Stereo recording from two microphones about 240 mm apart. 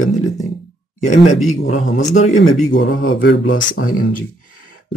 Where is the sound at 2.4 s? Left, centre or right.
Left.